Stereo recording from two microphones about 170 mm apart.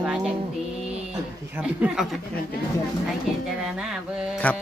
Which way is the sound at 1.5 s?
5° right (ahead or behind).